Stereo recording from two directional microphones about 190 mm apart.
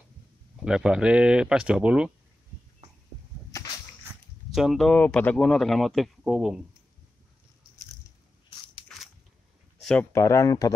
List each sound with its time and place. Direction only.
0.6 s speech: 5° right (ahead or behind)
4.5 s speech: centre (ahead or behind)
9.8 s a sound: 5° left (ahead or behind)
10.1 s speech: 15° left (ahead or behind)